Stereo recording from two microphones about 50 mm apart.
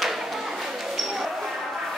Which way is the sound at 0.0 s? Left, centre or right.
Centre.